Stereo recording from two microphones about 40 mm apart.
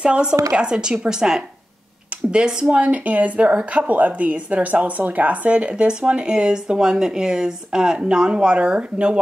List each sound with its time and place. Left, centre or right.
0.0 s speech: right
2.7 s speech: right